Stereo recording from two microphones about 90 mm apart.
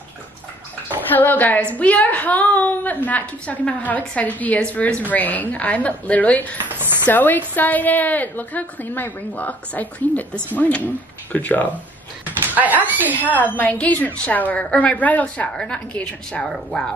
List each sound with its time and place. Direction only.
1.1 s a woman's voice: 20° left (ahead or behind)
6.8 s dishes: 25° right (ahead or behind)
7.1 s a woman's voice: 20° left (ahead or behind)
12.3 s a sound: 20° right (ahead or behind)
13.4 s a woman's voice: 15° left (ahead or behind)